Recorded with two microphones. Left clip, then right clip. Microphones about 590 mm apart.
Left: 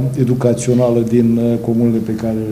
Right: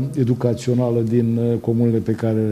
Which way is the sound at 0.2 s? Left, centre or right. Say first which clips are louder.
Left 5 dB; right.